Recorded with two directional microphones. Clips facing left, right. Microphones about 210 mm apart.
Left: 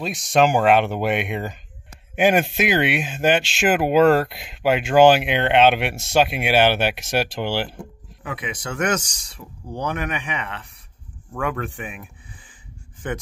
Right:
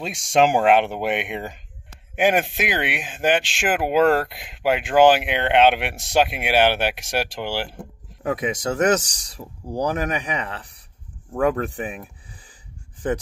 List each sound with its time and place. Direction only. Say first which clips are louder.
0.0 s speech: even; 30° right (ahead or behind); by 7.7 s 10° right (ahead or behind)
8.2 s speech: right 7 dB; 45° right (ahead or behind)